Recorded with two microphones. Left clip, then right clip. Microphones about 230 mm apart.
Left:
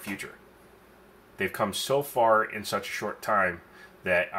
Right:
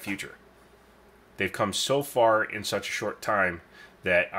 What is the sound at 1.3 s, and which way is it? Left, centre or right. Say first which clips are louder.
Speech: right 1 dB; right.